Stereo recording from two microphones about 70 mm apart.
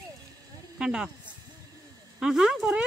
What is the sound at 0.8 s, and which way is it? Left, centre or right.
Speech, centre.